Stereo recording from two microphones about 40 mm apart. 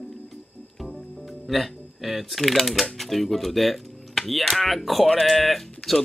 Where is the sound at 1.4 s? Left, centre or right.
Centre.